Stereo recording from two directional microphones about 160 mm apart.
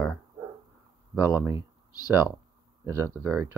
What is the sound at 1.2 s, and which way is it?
Speech, 10° right (ahead or behind).